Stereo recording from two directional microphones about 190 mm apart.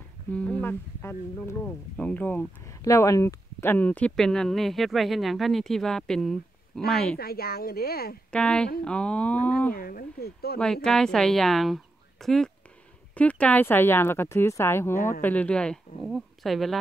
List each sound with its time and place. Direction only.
0.3 s speech: 5° left (ahead or behind)
7.2 s speech: 55° left (ahead or behind)
8.3 s speech: 5° left (ahead or behind)
9.8 s speech: 50° left (ahead or behind)
10.6 s speech: 5° left (ahead or behind)
15.0 s speech: 45° left (ahead or behind)
15.2 s speech: 5° left (ahead or behind)